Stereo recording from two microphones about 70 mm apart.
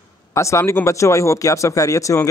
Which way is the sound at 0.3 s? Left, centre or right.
Left.